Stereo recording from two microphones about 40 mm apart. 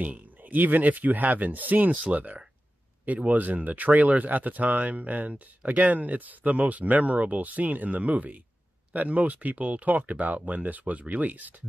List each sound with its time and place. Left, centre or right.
0.0 s speech: right